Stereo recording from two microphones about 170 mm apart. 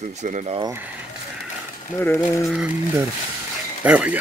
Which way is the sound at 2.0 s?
15° left (ahead or behind).